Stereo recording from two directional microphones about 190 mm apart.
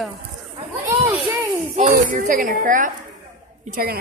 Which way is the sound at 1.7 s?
40° right (ahead or behind).